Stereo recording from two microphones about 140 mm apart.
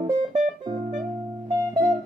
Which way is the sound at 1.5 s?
25° right (ahead or behind).